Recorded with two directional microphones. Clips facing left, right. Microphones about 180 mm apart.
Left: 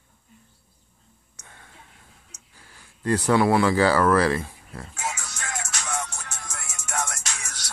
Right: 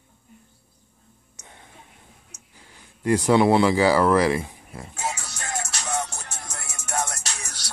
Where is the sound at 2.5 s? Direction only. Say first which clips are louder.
Right 2 dB; 20° right (ahead or behind).